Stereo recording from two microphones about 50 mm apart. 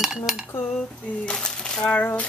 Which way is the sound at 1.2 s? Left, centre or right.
Centre.